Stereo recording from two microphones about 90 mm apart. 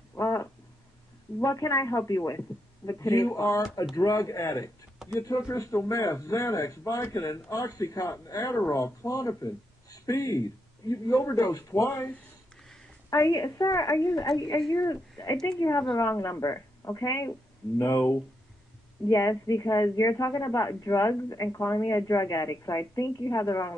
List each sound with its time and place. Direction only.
0.1 s a sound: 35° left (ahead or behind)
1.4 s a man's voice: 35° left (ahead or behind)
13.1 s a man's voice: 35° left (ahead or behind)
15.6 s speech: 50° left (ahead or behind)
16.0 s a man's voice: 35° left (ahead or behind)